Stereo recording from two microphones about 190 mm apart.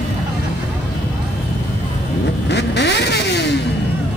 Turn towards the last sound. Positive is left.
turn(degrees=65)  # may be behind; listen again after turning